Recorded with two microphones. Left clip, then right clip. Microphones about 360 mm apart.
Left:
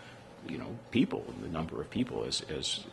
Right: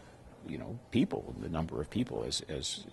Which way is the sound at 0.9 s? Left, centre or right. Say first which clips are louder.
Left 1 dB; right.